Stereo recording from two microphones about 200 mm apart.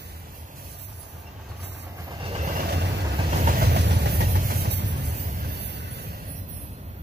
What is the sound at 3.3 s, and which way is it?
Vehicle, 40° right (ahead or behind).